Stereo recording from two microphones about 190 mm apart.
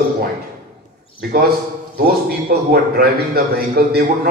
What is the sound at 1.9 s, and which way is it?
A man's voice, 55° right (ahead or behind).